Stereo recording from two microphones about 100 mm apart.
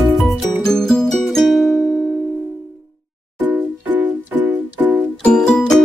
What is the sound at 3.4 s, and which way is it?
Music, 20° right (ahead or behind).